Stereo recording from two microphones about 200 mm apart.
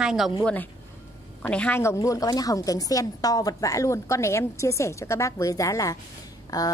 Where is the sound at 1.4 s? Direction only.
10° left (ahead or behind).